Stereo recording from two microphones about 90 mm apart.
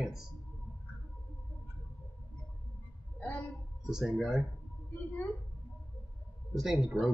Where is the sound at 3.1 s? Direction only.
20° left (ahead or behind).